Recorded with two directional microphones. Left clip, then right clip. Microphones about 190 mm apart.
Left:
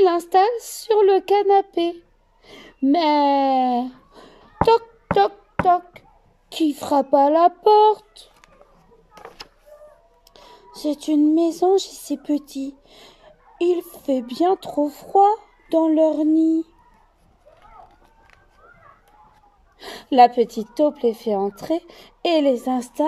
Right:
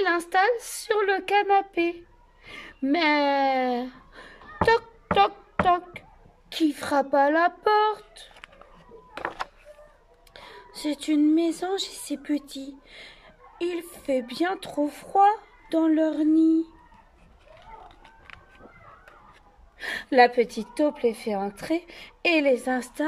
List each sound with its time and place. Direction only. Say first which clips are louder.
0.0 s speech: left 6 dB; 45° left (ahead or behind)
7.9 s a sound: left 9 dB; 15° left (ahead or behind)
10.3 s a woman's voice: even; 45° left (ahead or behind)
19.8 s a woman's voice: left 5 dB; 45° left (ahead or behind)